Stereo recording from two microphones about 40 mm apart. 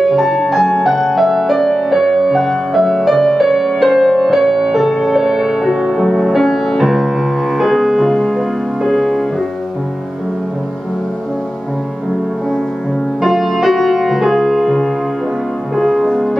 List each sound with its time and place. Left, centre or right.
0.0 s music: centre
6.8 s music: centre
13.2 s music: centre